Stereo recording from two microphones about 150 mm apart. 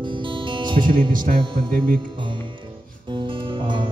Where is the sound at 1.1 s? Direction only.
70° right (ahead or behind).